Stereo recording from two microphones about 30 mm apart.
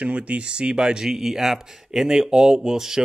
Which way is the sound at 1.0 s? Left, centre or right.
Centre.